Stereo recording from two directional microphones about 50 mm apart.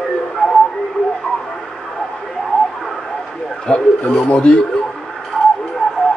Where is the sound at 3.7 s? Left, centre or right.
Centre.